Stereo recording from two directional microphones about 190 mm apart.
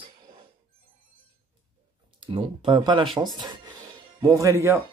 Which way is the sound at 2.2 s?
30° right (ahead or behind).